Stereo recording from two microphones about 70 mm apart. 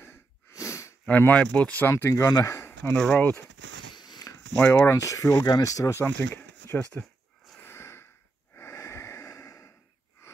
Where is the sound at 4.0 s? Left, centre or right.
Left.